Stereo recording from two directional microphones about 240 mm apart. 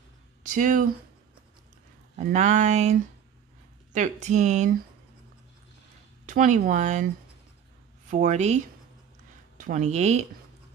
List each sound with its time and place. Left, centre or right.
0.4 s speech: right
2.1 s speech: right
6.2 s speech: right
8.1 s speech: right
9.6 s speech: right